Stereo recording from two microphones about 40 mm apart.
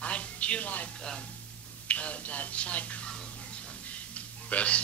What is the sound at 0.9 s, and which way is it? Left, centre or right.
Speech, centre.